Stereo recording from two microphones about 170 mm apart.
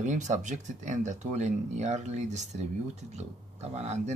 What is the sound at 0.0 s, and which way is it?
Speech, 45° right (ahead or behind).